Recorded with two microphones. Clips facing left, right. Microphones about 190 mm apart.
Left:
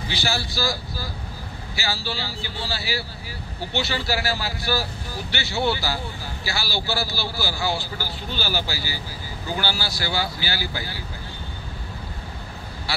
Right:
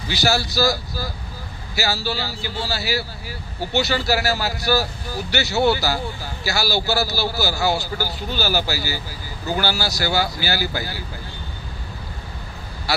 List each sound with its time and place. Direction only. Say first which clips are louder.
0.1 s speech: right 7 dB; 40° right (ahead or behind)